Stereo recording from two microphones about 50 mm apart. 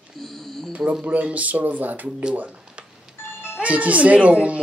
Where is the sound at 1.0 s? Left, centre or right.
Right.